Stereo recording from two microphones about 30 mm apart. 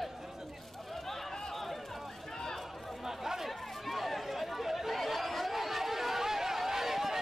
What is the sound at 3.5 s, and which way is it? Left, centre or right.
Chatter, centre.